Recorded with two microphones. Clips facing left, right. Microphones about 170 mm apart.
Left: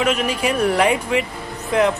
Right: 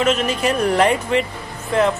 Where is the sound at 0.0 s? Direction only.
10° left (ahead or behind).